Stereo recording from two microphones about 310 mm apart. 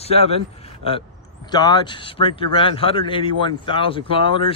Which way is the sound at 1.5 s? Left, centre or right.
Centre.